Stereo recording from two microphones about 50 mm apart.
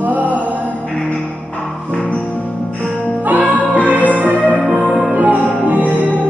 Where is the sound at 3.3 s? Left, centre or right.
Right.